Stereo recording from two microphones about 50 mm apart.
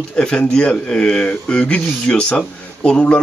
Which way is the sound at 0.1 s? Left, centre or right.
Left.